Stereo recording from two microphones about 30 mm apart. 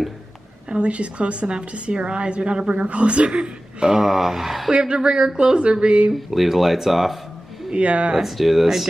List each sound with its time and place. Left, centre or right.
0.7 s a woman's voice: right
4.0 s speech: centre
4.6 s a woman's voice: right
6.1 s speech: centre
7.7 s speech: right
8.2 s speech: centre